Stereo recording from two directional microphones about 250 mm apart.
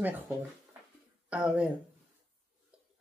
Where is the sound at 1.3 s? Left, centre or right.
Centre.